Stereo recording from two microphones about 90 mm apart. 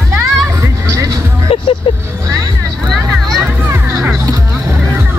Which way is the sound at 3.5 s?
25° right (ahead or behind).